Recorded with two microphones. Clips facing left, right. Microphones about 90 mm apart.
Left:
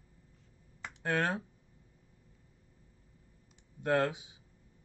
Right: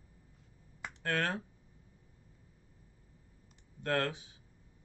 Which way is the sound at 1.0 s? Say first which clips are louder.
Left 2 dB; 15° left (ahead or behind).